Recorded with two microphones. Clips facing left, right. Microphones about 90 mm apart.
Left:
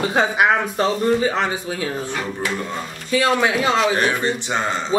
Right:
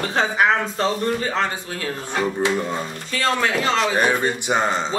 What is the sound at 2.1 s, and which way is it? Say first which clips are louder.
Speech: right 4 dB; 20° right (ahead or behind).